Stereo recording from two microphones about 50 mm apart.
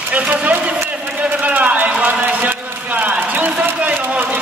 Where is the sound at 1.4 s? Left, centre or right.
Right.